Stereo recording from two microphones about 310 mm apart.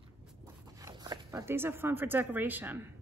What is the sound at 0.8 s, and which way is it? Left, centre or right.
A woman's voice, centre.